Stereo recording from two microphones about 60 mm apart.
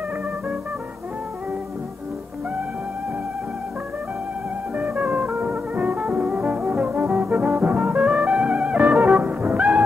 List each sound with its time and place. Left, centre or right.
4.9 s music: right
5.3 s music: centre
5.8 s music: centre
7.1 s brass instrument: centre
7.5 s brass instrument: right
7.8 s music: centre